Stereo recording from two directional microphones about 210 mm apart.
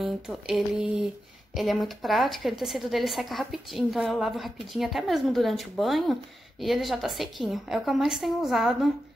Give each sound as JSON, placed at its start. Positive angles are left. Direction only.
{"t": 0.0, "sound": "a woman's voice", "side_deg": 0}